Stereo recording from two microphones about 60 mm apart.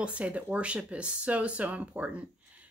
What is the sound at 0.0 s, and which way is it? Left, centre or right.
A woman's voice, right.